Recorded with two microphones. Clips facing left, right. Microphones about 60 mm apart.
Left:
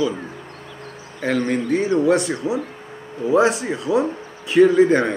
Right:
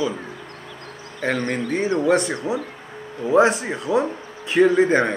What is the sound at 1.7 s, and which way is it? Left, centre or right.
Speech, right.